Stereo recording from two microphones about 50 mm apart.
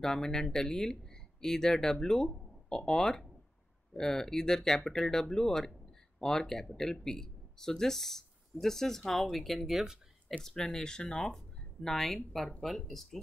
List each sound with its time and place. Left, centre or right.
0.0 s speech: centre
10.4 s speech: centre
11.3 s a sound: centre
12.5 s speech: centre